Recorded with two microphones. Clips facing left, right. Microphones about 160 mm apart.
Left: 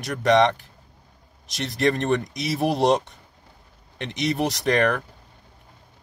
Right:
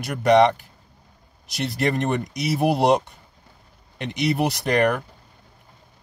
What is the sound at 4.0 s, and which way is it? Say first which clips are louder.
Speech: right 2 dB; 5° right (ahead or behind).